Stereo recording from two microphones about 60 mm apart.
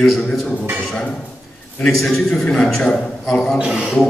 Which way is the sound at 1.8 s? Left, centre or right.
Centre.